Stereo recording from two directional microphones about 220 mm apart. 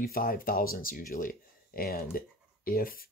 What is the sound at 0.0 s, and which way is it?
Speech, 40° left (ahead or behind).